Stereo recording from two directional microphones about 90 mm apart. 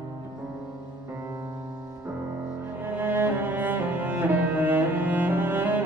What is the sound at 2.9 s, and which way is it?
Cello, 25° right (ahead or behind).